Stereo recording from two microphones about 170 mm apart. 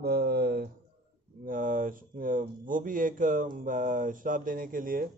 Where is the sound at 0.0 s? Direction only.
70° right (ahead or behind).